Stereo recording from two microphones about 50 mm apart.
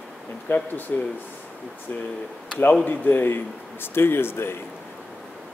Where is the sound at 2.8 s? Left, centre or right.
Left.